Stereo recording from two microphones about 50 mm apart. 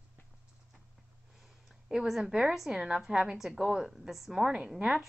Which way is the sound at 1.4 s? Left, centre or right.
Centre.